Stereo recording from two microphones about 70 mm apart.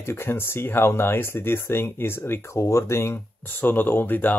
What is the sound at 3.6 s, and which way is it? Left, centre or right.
Speech, left.